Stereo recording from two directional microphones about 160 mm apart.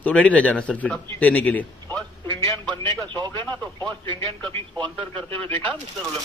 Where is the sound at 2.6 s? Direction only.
25° right (ahead or behind).